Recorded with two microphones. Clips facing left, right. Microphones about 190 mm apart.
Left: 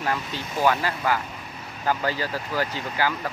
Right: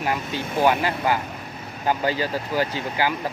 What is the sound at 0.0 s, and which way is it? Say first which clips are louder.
Speech: right 2 dB; 20° right (ahead or behind).